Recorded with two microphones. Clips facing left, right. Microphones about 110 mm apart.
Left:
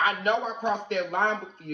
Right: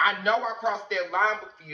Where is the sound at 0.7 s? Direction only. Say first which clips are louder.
Left 3 dB; 50° left (ahead or behind).